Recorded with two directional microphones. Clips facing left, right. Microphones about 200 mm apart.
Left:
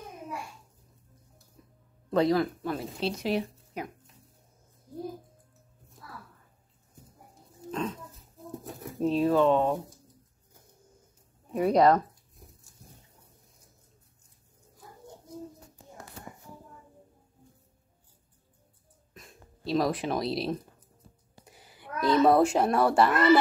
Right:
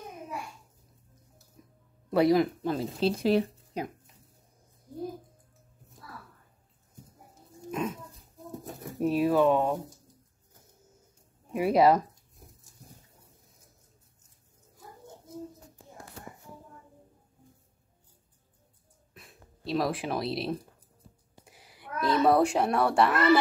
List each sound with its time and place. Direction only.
1.6 s music: 15° right (ahead or behind)
2.0 s speech: 15° right (ahead or behind); by 3.9 s 30° right (ahead or behind)
7.7 s dog: 10° right (ahead or behind)
8.1 s a sound: centre (ahead or behind)
8.9 s speech: 10° right (ahead or behind)
11.5 s speech: 5° right (ahead or behind)
19.1 s speech: centre (ahead or behind)